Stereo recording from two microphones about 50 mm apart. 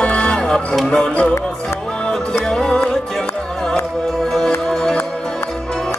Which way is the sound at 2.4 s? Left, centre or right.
Centre.